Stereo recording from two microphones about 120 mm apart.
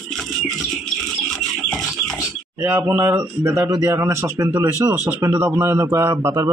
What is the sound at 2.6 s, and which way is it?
A man's voice, 20° right (ahead or behind).